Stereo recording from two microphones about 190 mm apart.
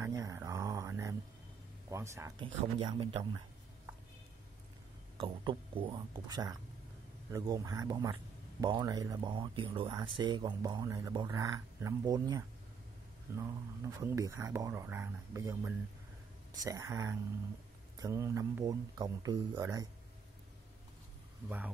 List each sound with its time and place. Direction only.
0.0 s a sound: 15° right (ahead or behind)
1.9 s speech: 15° right (ahead or behind)
5.1 s speech: 25° right (ahead or behind)